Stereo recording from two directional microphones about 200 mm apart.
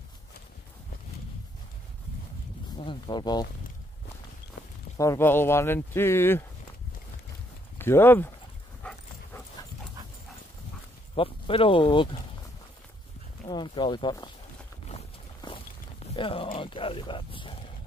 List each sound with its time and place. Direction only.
2.8 s speech: 25° left (ahead or behind)
4.9 s speech: 15° left (ahead or behind)
7.8 s speech: 10° left (ahead or behind)
11.1 s speech: 25° left (ahead or behind)
13.5 s speech: 20° left (ahead or behind)
14.9 s walk: 30° left (ahead or behind)